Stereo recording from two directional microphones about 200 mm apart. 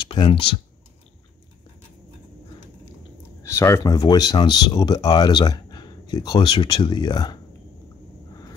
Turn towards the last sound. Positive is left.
turn(degrees=20)  # may be behind; listen again after turning